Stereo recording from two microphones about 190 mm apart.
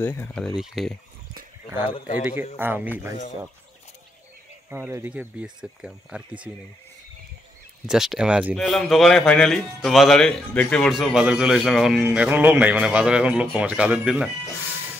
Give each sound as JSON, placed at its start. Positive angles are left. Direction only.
{"t": 0.0, "sound": "speech", "side_deg": 10}
{"t": 1.9, "sound": "a man's voice", "side_deg": 30}
{"t": 2.5, "sound": "speech", "side_deg": -10}
{"t": 4.6, "sound": "speech", "side_deg": -10}
{"t": 7.8, "sound": "speech", "side_deg": -5}